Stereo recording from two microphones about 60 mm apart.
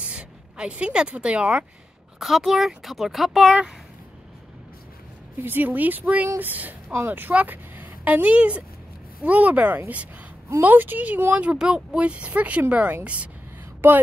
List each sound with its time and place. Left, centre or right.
0.0 s speech: centre
2.1 s speech: centre
5.4 s a woman's voice: right
11.5 s speech: centre
13.8 s speech: right